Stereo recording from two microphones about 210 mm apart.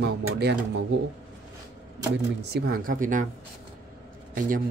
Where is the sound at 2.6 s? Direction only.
45° right (ahead or behind).